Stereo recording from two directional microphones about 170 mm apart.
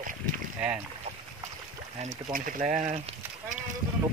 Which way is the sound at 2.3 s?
55° right (ahead or behind).